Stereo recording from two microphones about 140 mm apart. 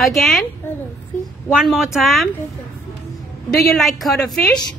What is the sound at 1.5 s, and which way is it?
Speech, 5° right (ahead or behind).